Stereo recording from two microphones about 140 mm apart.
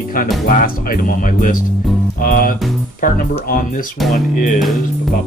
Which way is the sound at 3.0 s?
75° left (ahead or behind).